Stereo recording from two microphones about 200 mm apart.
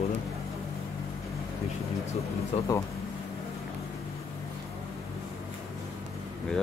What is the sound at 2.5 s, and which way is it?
Speech, 30° left (ahead or behind).